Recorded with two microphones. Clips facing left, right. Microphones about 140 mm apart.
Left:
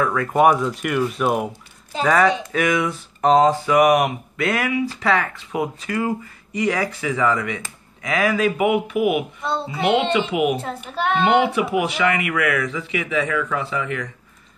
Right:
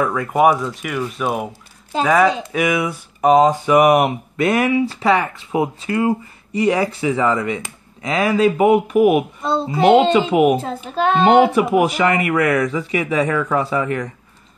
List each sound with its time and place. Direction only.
0.0 s speech: 15° right (ahead or behind)
0.3 s speech: centre (ahead or behind); by 14.0 s 40° right (ahead or behind)